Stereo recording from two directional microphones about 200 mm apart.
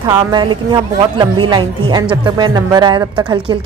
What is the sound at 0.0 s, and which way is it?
Speech, 20° right (ahead or behind).